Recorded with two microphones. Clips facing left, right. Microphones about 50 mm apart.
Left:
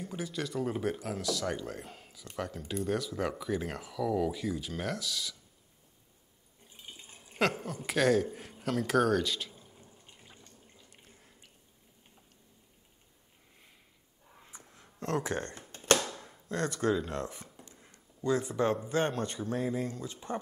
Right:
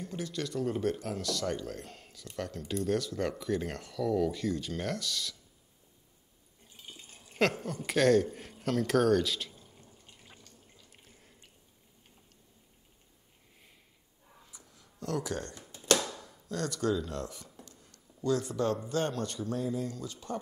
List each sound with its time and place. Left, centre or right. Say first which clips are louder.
0.0 s speech: even; centre
6.8 s water: even; centre
7.3 s speech: right 1 dB; centre
9.5 s a sound: left 1 dB; centre
10.9 s drip: even; centre
14.4 s a sound: left 6 dB; left
16.4 s speech: left 1 dB; left